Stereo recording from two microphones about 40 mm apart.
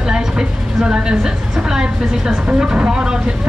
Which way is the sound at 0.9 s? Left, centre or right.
Right.